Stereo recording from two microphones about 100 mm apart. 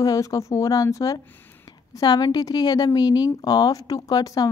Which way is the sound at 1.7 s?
40° left (ahead or behind).